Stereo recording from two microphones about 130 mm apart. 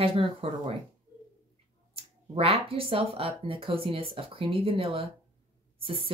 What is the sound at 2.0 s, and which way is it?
Speech, 50° right (ahead or behind).